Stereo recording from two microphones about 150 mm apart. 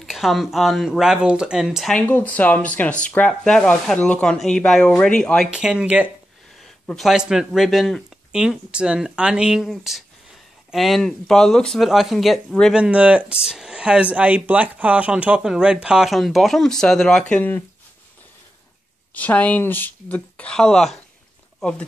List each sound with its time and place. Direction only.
0.0 s speech: centre (ahead or behind)
2.0 s speech: 10° left (ahead or behind)
5.5 s speech: 5° right (ahead or behind); by 17.6 s 10° left (ahead or behind)
19.1 s speech: 10° left (ahead or behind)